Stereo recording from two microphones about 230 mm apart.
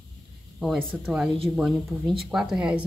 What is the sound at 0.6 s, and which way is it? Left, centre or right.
Speech, centre.